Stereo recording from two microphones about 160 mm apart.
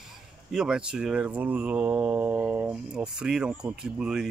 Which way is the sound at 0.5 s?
5° right (ahead or behind).